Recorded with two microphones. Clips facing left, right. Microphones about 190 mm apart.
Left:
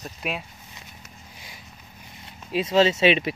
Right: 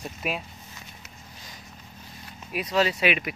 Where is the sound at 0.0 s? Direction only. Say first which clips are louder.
Even; centre (ahead or behind).